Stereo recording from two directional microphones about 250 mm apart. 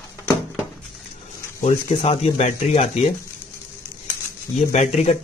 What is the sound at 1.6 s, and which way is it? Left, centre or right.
Speech, left.